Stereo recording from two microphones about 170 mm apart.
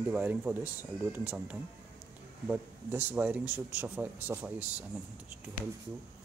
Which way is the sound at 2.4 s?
10° right (ahead or behind).